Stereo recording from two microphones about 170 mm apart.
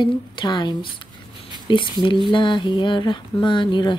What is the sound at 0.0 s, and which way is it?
Speech, 25° left (ahead or behind).